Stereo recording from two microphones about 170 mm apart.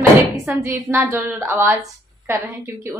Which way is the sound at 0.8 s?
15° right (ahead or behind).